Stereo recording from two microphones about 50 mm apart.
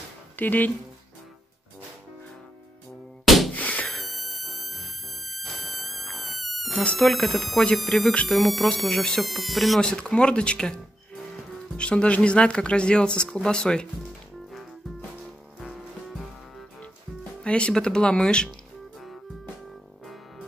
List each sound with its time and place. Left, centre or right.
0.4 s speech: left
3.3 s a sound: centre
3.5 s thunk: left
3.9 s music: centre
6.7 s speech: left
7.1 s speech: centre
8.1 s speech: left
8.4 s speech: centre
8.7 s speech: centre
9.2 s speech: centre
9.8 s speech: centre
17.5 s speech: centre